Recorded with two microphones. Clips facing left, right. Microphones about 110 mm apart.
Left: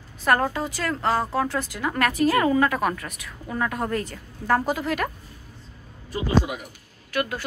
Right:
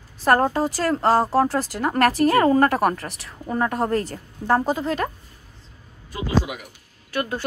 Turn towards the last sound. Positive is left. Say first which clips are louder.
# right 1 dB
turn(degrees=-30)  # may be behind; listen again after turning